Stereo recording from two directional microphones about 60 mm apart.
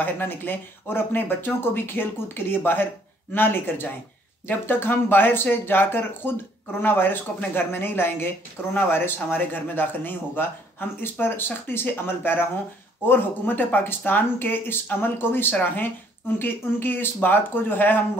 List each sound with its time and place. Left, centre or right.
0.0 s speech: left